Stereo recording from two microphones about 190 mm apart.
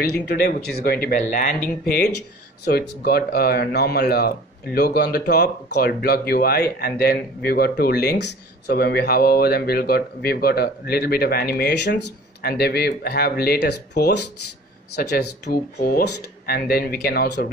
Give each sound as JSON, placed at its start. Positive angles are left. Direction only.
{"t": 0.3, "sound": "speech", "side_deg": 55}